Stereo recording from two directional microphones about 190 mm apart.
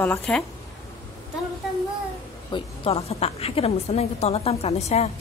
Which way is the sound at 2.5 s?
30° left (ahead or behind).